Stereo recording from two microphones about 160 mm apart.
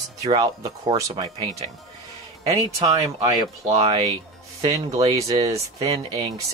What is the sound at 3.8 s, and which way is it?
Speech, 30° right (ahead or behind).